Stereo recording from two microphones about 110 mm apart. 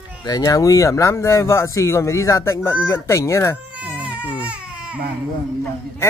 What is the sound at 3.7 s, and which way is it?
Baby cry, 10° right (ahead or behind).